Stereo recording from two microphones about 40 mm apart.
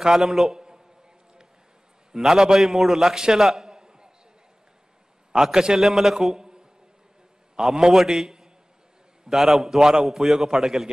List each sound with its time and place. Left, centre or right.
0.0 s a man's voice: centre
2.1 s a man's voice: centre
5.3 s a man's voice: centre
7.9 s a man's voice: centre